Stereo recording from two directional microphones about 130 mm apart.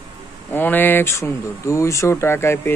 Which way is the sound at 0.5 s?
15° left (ahead or behind).